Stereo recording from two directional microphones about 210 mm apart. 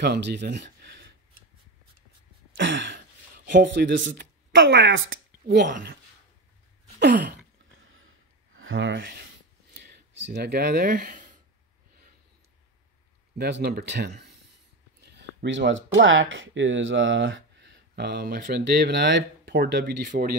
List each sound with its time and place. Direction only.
0.0 s speech: 55° right (ahead or behind)
2.5 s throat clearing: 60° right (ahead or behind)
3.4 s speech: 60° right (ahead or behind)
5.7 s speech: 40° right (ahead or behind)
7.0 s speech: 55° right (ahead or behind)
8.5 s speech: 70° right (ahead or behind)
9.7 s a sound: 55° right (ahead or behind)
13.4 s speech: 50° right (ahead or behind)